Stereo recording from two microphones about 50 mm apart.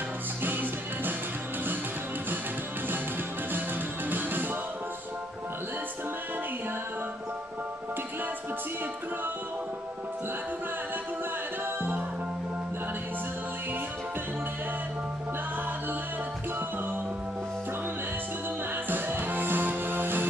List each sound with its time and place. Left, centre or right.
0.4 s music: right
4.1 s music: right
18.9 s music: right